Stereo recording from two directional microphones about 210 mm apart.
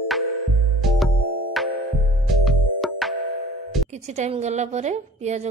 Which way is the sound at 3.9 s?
35° right (ahead or behind).